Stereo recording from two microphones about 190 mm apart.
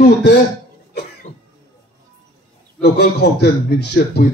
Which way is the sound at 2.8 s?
60° left (ahead or behind).